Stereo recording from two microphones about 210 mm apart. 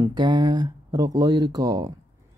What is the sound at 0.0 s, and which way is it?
Speech, 20° right (ahead or behind).